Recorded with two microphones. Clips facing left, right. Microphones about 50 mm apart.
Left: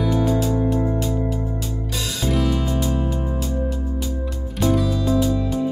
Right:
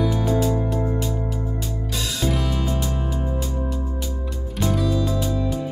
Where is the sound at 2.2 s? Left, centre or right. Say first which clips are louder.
Left 3 dB; centre.